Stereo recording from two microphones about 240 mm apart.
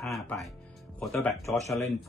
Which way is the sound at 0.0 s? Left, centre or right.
Centre.